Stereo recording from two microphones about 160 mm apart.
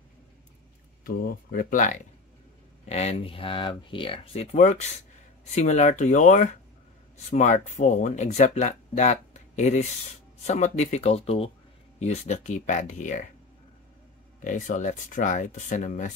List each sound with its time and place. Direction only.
1.0 s speech: 65° left (ahead or behind)
2.9 s speech: 40° left (ahead or behind)
14.4 s speech: 55° left (ahead or behind)